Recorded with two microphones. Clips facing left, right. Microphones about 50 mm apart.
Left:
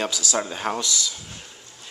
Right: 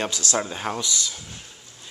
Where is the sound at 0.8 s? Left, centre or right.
Right.